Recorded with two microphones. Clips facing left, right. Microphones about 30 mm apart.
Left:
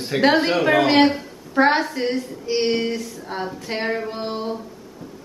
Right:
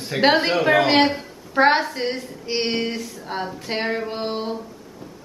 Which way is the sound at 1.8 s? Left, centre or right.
Centre.